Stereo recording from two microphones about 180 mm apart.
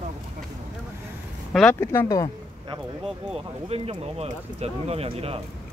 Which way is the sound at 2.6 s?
30° right (ahead or behind).